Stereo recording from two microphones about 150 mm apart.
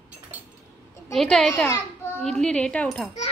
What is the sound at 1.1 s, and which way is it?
Speech, centre (ahead or behind).